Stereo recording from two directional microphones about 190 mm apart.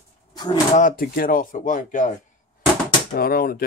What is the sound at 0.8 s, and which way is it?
Speech, 45° left (ahead or behind).